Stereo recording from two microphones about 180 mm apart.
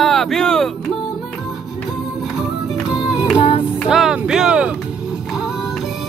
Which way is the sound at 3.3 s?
30° left (ahead or behind).